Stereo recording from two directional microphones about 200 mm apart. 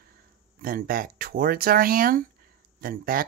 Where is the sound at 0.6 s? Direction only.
45° right (ahead or behind).